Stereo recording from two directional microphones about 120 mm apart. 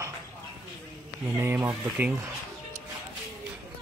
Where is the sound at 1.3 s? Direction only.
20° right (ahead or behind).